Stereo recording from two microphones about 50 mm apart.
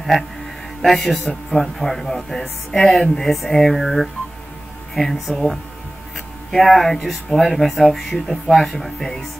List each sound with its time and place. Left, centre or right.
0.8 s speech: centre
6.5 s speech: centre